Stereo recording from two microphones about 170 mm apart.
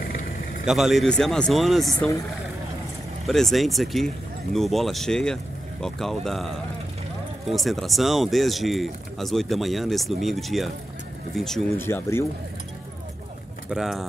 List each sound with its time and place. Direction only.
0.7 s speech: centre (ahead or behind)
3.3 s speech: centre (ahead or behind)
11.8 s speech: 15° left (ahead or behind)
13.7 s speech: centre (ahead or behind)